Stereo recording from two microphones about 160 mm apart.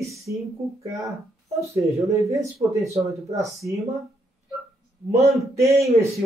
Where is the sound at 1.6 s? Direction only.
20° right (ahead or behind).